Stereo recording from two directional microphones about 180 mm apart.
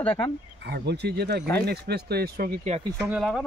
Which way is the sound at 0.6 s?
65° right (ahead or behind).